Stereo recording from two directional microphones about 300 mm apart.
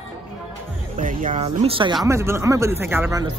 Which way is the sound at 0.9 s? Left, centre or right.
Right.